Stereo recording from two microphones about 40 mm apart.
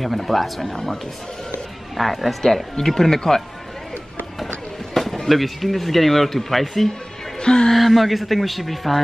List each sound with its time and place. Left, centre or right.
0.0 s speech: centre
2.0 s speech: centre
4.9 s speech: centre
7.3 s speech: centre
7.7 s speech: centre